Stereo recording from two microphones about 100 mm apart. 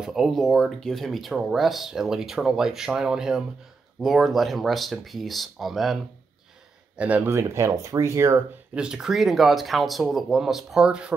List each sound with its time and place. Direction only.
0.0 s speech: 5° right (ahead or behind)
7.0 s speech: 15° right (ahead or behind)
7.2 s speech: 25° right (ahead or behind)
8.7 s speech: 10° right (ahead or behind)